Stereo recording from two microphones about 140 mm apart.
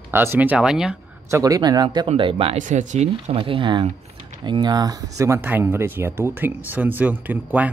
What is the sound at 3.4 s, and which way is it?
Speech, 35° right (ahead or behind).